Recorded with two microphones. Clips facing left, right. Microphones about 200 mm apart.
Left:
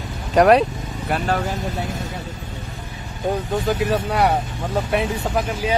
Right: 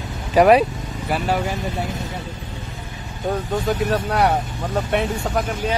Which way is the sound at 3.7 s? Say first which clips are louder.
Even; centre (ahead or behind).